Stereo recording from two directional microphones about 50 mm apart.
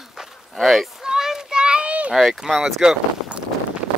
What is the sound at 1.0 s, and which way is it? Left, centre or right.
Children playing, centre.